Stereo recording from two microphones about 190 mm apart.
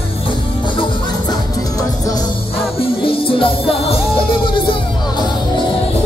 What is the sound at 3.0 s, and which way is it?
Music, 30° left (ahead or behind).